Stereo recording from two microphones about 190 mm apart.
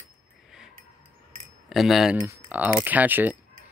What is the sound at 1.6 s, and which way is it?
Speech, centre (ahead or behind).